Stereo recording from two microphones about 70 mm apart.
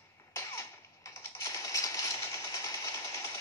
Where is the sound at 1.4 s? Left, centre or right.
Left.